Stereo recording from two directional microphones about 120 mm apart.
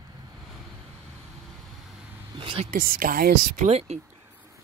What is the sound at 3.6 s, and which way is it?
Speech, 60° right (ahead or behind).